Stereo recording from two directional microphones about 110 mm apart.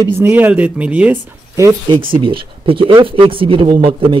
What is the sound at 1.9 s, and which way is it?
Speech, 50° right (ahead or behind).